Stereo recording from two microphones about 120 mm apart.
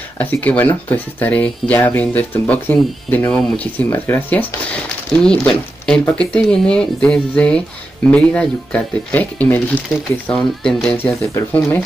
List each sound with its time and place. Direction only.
0.2 s speech: 15° left (ahead or behind)
5.5 s speech: 5° left (ahead or behind)
11.3 s speech: 15° left (ahead or behind)